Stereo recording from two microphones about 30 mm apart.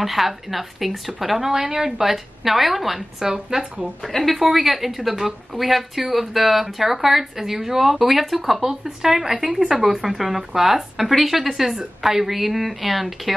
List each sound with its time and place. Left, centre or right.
0.0 s speech: centre
1.5 s speech: centre
3.4 s speech: centre
4.2 s speech: centre
11.1 s speech: centre